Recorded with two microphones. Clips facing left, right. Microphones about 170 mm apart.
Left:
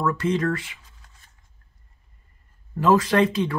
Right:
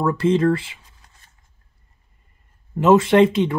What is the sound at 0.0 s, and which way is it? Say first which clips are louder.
Speech: right 5 dB; 25° right (ahead or behind).